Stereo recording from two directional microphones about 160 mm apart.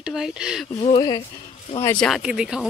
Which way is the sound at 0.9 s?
30° left (ahead or behind).